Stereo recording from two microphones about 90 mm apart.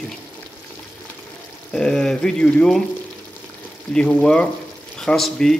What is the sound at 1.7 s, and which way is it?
Speech, 5° left (ahead or behind).